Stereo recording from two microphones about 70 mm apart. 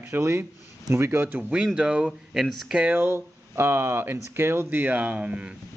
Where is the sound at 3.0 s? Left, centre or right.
Right.